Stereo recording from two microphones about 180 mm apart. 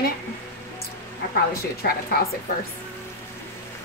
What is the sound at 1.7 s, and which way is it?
Speech, 60° left (ahead or behind).